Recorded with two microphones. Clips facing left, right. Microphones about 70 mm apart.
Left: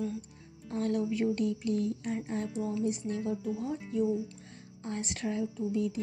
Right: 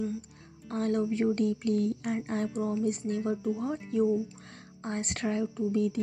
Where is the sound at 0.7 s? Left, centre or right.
Right.